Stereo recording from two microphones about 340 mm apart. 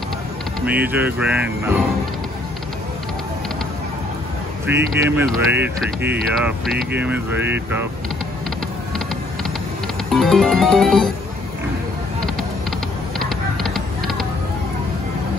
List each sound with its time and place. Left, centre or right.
0.6 s speech: centre
4.6 s speech: centre
10.1 s speech: centre
13.2 s a sound: centre